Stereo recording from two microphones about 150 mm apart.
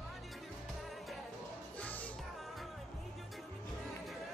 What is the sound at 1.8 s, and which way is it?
Music, 10° left (ahead or behind).